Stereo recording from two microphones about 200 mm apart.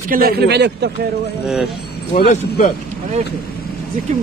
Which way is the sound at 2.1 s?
35° left (ahead or behind).